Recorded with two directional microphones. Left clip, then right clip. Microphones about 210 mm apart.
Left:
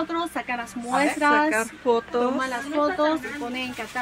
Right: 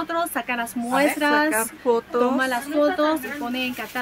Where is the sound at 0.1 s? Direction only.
40° right (ahead or behind).